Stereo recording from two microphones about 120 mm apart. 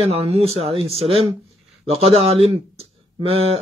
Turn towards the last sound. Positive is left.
turn(degrees=-55)  # may be behind; listen again after turning